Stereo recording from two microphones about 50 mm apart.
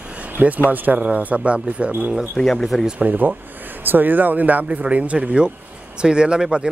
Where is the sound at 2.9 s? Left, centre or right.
Right.